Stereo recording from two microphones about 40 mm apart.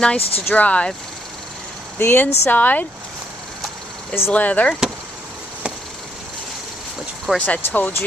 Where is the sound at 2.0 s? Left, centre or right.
Left.